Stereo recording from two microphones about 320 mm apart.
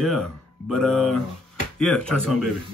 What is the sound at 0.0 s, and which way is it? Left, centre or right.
Speech, centre.